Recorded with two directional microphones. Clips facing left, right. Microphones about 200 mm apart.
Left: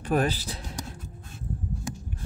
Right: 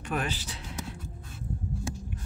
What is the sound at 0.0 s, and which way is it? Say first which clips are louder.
Speech: left 7 dB; 35° left (ahead or behind).